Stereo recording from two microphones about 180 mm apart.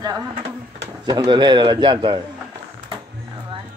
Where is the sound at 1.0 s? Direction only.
25° right (ahead or behind).